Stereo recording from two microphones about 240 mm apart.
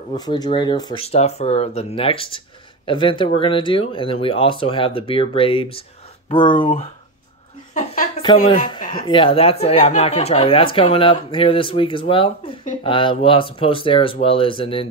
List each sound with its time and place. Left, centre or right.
0.1 s speech: centre
7.7 s a sound: left
9.0 s speech: left